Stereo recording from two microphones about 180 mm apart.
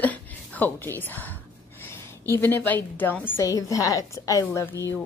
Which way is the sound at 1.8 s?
15° left (ahead or behind).